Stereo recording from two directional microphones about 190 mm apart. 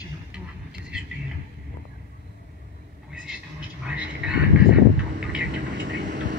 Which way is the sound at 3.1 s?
5° right (ahead or behind).